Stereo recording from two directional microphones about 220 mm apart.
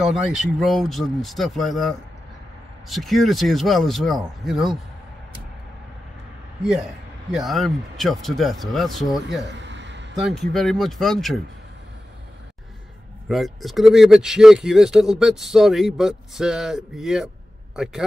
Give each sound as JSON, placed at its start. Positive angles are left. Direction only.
{"t": 0.0, "sound": "speech", "side_deg": 0}
{"t": 6.6, "sound": "speech", "side_deg": 0}
{"t": 9.4, "sound": "a sound", "side_deg": -55}
{"t": 10.2, "sound": "speech", "side_deg": 0}
{"t": 13.3, "sound": "speech", "side_deg": 0}